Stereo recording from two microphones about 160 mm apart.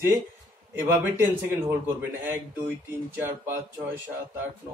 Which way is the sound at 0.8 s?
15° right (ahead or behind).